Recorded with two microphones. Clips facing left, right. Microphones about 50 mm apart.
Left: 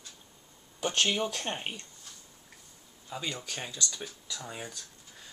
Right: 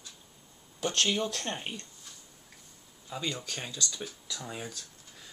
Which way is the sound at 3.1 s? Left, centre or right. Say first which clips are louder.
Right 1 dB; centre.